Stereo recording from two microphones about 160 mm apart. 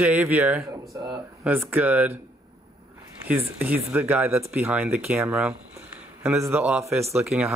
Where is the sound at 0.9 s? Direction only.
20° right (ahead or behind).